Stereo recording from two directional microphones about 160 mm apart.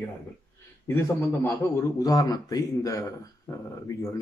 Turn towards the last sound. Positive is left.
turn(degrees=20)  # may be behind; listen again after turning